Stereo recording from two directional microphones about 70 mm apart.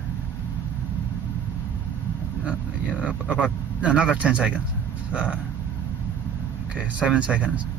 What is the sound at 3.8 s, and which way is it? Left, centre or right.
Speech, centre.